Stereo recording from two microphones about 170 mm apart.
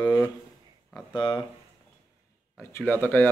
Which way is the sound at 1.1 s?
30° left (ahead or behind).